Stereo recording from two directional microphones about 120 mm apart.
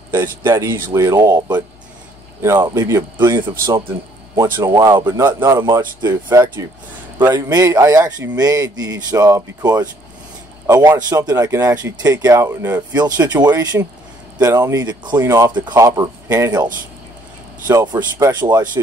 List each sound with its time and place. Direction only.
0.1 s speech: 20° right (ahead or behind)
2.7 s speech: 30° right (ahead or behind)
3.3 s a man's voice: 45° right (ahead or behind); by 12.8 s 20° right (ahead or behind)
12.9 s speech: 35° right (ahead or behind)
15.5 s speech: 40° right (ahead or behind)
15.8 s speech: 25° right (ahead or behind)
17.6 s speech: 35° right (ahead or behind)